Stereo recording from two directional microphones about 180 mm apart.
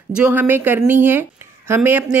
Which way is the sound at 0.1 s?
10° right (ahead or behind).